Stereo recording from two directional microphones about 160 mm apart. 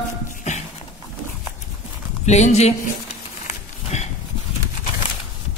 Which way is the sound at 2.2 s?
45° left (ahead or behind).